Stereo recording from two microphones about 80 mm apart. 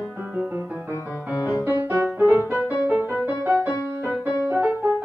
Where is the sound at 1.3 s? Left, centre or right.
Left.